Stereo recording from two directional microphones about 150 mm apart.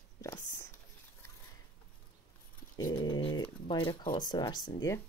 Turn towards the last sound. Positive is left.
turn(degrees=25)  # may be behind; listen again after turning